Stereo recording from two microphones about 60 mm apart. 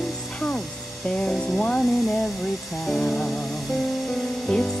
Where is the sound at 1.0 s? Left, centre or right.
Centre.